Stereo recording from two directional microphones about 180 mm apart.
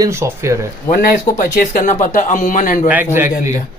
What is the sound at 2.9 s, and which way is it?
Speech, 10° right (ahead or behind).